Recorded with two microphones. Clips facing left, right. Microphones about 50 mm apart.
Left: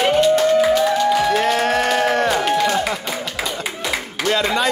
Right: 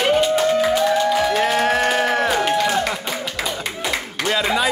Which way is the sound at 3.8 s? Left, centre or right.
Centre.